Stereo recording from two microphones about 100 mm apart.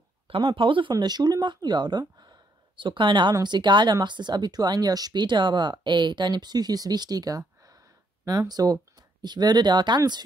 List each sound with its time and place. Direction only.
0.3 s speech: 60° right (ahead or behind)
0.9 s speech: 45° right (ahead or behind)